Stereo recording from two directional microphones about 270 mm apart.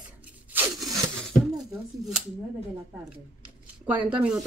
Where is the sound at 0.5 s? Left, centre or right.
Centre.